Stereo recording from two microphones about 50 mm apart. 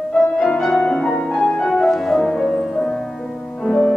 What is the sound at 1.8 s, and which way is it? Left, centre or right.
Music, centre.